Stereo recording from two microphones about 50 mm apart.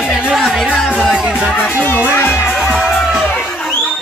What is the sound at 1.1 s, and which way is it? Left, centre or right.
Music, centre.